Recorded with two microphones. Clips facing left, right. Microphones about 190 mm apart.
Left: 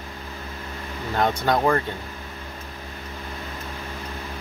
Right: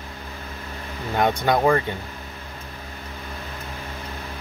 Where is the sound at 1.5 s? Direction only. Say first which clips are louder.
Right 2 dB; 15° right (ahead or behind).